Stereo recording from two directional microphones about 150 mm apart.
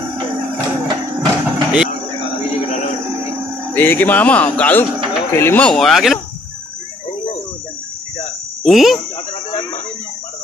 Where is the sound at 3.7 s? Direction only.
15° left (ahead or behind).